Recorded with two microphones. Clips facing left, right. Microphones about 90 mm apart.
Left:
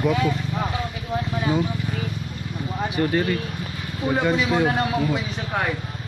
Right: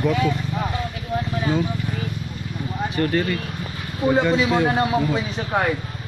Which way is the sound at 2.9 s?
15° left (ahead or behind).